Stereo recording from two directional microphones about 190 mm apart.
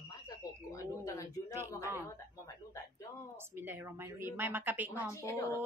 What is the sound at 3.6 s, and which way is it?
A woman's voice, 10° right (ahead or behind).